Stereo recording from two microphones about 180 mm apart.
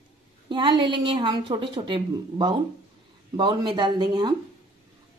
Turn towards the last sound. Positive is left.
turn(degrees=-25)  # may be behind; listen again after turning